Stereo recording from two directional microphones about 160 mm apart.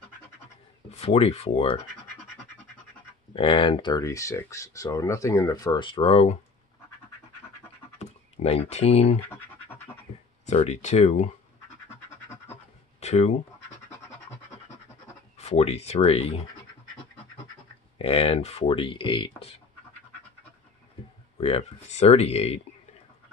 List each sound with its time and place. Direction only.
0.8 s speech: 40° left (ahead or behind)
3.3 s speech: 35° left (ahead or behind)
8.0 s speech: 40° left (ahead or behind)
9.3 s scratch: 10° left (ahead or behind)
10.4 s speech: 45° left (ahead or behind)
13.0 s speech: 45° left (ahead or behind)
15.3 s speech: 40° left (ahead or behind)
17.9 s speech: 35° left (ahead or behind)
21.4 s speech: 40° left (ahead or behind)